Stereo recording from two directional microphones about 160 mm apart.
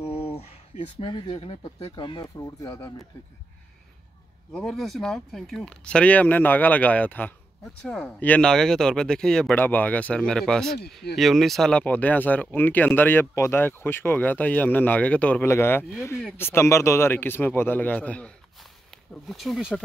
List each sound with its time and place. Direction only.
0.0 s speech: 40° left (ahead or behind)
4.5 s speech: centre (ahead or behind)